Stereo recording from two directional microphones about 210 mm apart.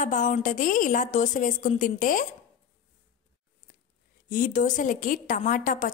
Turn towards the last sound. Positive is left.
turn(degrees=40)  # may be behind; listen again after turning